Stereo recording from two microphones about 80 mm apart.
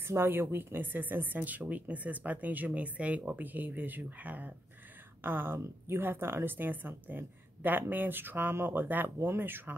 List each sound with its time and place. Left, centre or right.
0.0 s a woman's voice: right